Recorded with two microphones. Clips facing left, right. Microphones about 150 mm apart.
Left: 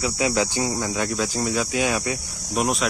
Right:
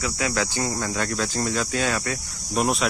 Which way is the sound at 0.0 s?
20° left (ahead or behind).